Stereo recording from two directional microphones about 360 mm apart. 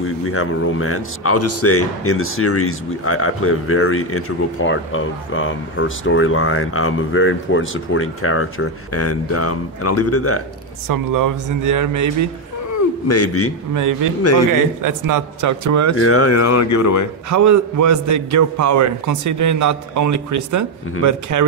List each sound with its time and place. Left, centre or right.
0.0 s a man's voice: left
10.9 s speech: right
13.1 s a man's voice: left
13.7 s a man's voice: right
16.0 s speech: left
17.3 s a man's voice: right